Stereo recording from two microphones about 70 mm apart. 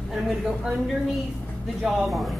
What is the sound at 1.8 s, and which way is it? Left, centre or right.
Speech, centre.